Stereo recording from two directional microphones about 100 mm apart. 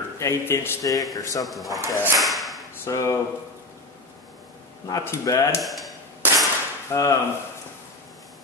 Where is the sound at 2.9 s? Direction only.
35° left (ahead or behind).